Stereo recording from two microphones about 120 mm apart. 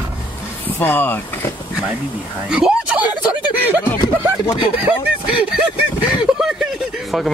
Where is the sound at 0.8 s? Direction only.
15° left (ahead or behind).